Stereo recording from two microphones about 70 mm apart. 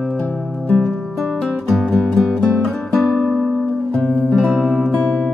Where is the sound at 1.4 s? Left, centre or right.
Centre.